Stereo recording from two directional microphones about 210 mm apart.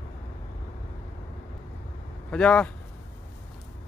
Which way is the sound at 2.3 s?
5° left (ahead or behind).